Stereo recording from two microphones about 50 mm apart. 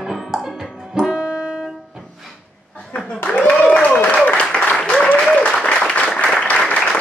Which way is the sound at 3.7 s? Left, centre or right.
Left.